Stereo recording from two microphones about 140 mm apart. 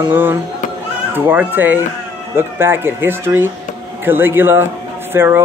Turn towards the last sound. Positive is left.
turn(degrees=-15)  # may be behind; listen again after turning